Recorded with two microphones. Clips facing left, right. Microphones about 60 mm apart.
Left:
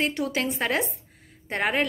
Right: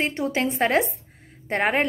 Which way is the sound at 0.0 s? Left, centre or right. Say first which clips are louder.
Right 2 dB; right.